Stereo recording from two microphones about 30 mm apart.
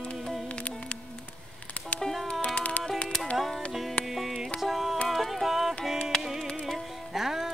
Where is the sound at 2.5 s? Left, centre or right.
Left.